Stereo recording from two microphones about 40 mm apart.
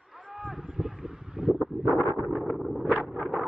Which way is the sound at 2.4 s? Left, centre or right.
Centre.